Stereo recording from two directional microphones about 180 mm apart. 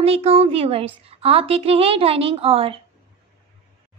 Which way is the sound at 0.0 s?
35° right (ahead or behind).